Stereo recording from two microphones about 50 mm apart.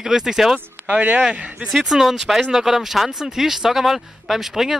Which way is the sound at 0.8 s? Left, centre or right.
Right.